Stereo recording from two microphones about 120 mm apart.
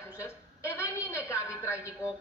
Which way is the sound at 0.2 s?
25° left (ahead or behind).